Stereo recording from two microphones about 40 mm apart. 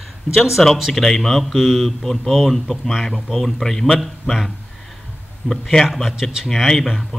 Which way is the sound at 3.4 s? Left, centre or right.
Centre.